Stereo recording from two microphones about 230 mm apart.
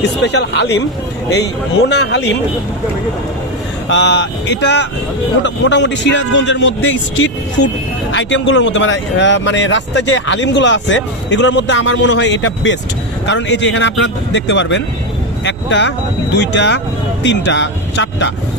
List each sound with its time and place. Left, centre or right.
0.2 s speech: left
3.9 s speech: left
15.4 s vehicle: left
16.3 s speech: left